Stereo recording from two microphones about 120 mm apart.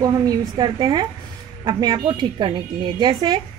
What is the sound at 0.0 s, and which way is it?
A woman's voice, 30° right (ahead or behind).